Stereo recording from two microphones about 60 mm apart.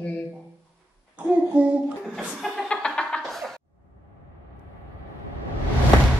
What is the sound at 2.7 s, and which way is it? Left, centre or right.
Music, centre.